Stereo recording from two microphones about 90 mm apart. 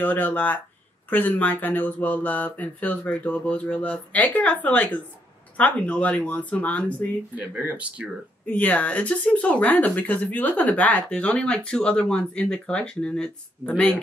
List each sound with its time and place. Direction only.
0.0 s speech: 20° left (ahead or behind)
7.3 s speech: 15° right (ahead or behind)
8.5 s speech: 20° left (ahead or behind)